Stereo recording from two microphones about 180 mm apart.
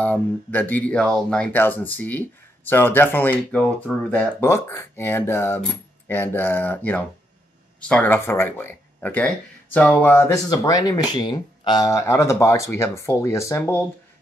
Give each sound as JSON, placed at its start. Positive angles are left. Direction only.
{"t": 0.0, "sound": "speech", "side_deg": 10}